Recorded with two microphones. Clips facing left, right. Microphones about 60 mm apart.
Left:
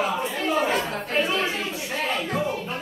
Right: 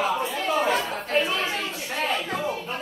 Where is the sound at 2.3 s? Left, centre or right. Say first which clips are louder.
Left 2 dB; centre.